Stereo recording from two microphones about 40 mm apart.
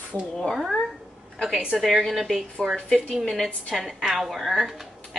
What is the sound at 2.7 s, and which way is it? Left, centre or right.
Speech, left.